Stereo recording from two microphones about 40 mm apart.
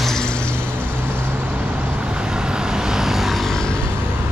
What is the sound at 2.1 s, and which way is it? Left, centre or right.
Vehicle, right.